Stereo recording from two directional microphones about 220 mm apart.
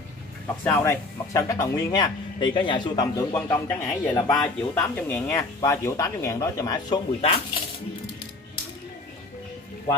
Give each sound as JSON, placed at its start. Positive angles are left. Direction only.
{"t": 0.7, "sound": "speech", "side_deg": 15}
{"t": 4.7, "sound": "speech", "side_deg": 5}
{"t": 7.2, "sound": "speech", "side_deg": 30}